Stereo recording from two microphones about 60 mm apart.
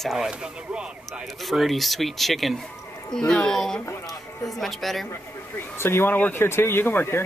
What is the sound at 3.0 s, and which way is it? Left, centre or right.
Speech, centre.